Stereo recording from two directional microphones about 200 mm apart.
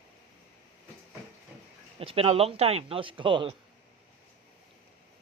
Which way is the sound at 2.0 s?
25° right (ahead or behind).